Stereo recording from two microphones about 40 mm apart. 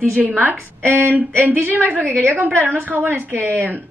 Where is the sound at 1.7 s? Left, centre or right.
Right.